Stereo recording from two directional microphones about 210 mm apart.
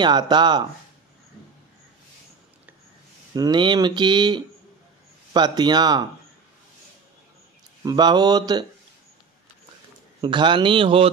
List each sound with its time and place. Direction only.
0.0 s speech: 20° right (ahead or behind)
3.3 s speech: 20° right (ahead or behind)
7.8 s speech: 20° right (ahead or behind)
10.2 s speech: 20° right (ahead or behind)